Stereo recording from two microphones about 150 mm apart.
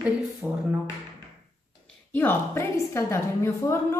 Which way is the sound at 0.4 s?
5° right (ahead or behind).